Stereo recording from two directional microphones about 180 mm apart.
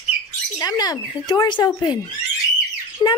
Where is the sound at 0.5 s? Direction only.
20° left (ahead or behind).